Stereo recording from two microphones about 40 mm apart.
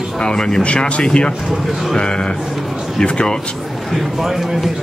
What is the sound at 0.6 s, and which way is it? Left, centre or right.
Speech, left.